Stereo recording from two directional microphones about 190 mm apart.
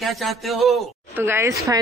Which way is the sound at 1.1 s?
10° right (ahead or behind).